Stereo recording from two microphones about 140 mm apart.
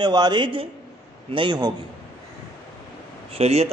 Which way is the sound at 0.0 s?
30° right (ahead or behind).